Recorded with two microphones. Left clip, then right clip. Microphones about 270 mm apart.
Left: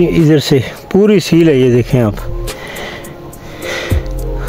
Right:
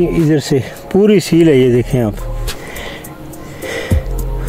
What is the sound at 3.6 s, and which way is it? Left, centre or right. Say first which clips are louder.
Music: left 2 dB; left.